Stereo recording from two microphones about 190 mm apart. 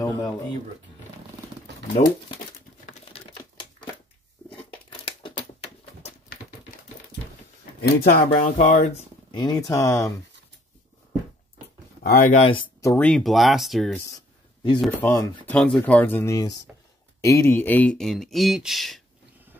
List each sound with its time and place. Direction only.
0.0 s speech: 20° left (ahead or behind)
2.0 s speech: 40° left (ahead or behind)
2.9 s crumpling: 30° left (ahead or behind)
4.8 s crumpling: 30° left (ahead or behind)
7.8 s speech: 55° left (ahead or behind)
8.6 s speech: 35° left (ahead or behind)
9.3 s speech: 20° left (ahead or behind)
12.0 s a sound: 55° left (ahead or behind)
12.3 s speech: 40° left (ahead or behind)
12.8 s speech: 10° left (ahead or behind)